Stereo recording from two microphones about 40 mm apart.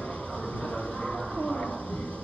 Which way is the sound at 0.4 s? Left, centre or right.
Left.